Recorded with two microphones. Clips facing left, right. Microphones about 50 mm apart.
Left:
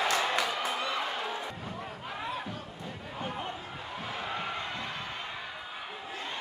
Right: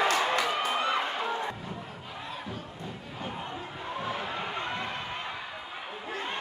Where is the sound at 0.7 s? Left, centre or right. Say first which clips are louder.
Right 4 dB; right.